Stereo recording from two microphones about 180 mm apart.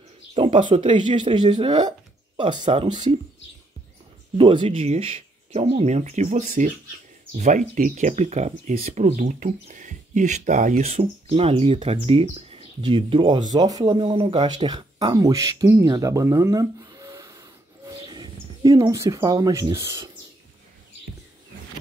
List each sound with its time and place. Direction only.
0.3 s speech: 30° right (ahead or behind)
4.4 s speech: 30° right (ahead or behind)